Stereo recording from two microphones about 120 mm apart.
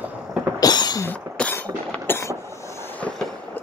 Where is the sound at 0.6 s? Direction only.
35° left (ahead or behind).